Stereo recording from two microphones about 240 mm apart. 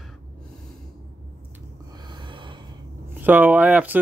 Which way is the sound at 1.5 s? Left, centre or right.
Centre.